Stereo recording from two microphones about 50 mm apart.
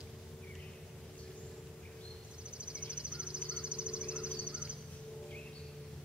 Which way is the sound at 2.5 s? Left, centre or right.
Right.